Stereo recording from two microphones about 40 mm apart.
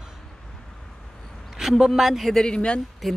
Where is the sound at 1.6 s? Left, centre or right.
Centre.